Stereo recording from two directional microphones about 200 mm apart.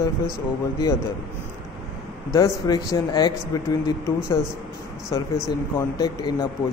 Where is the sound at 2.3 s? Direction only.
20° left (ahead or behind).